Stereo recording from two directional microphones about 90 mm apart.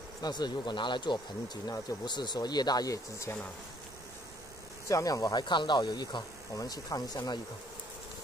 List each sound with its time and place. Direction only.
0.2 s speech: 50° left (ahead or behind)
4.8 s speech: 40° left (ahead or behind)
6.5 s speech: 40° left (ahead or behind)